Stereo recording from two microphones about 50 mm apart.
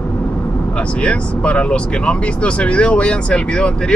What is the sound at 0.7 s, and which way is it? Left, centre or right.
Speech, left.